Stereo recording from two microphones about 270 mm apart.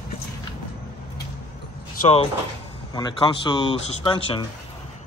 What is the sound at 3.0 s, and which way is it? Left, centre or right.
Speech, centre.